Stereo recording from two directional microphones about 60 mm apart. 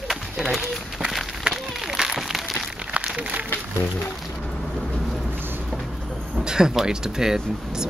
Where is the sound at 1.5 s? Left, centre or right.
Centre.